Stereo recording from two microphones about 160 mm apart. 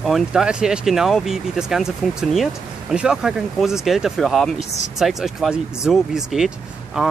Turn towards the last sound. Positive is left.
turn(degrees=-5)  # may be behind; listen again after turning